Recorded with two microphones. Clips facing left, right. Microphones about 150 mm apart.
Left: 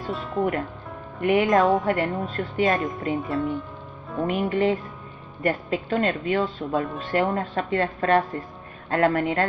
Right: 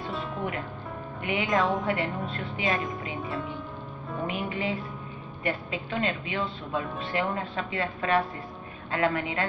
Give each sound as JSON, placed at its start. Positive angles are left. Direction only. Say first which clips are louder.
{"t": 0.0, "sound": "speech", "louder": "left 6 dB", "side_deg": 0}
{"t": 1.2, "sound": "a woman's voice", "louder": "left 10 dB", "side_deg": 50}
{"t": 1.5, "sound": "speech", "louder": "left 2 dB", "side_deg": 0}
{"t": 1.9, "sound": "a woman's voice", "louder": "left 5 dB", "side_deg": 45}
{"t": 3.2, "sound": "speech", "louder": "left 7 dB", "side_deg": 0}
{"t": 4.3, "sound": "a woman's voice", "louder": "left 10 dB", "side_deg": 50}